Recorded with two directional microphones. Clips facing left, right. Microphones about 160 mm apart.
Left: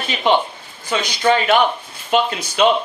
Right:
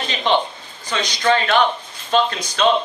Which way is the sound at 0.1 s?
10° left (ahead or behind).